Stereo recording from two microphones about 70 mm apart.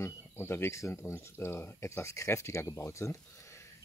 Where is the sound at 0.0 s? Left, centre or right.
Left.